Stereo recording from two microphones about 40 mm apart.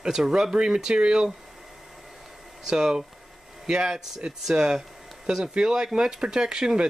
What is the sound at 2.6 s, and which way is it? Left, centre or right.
Speech, centre.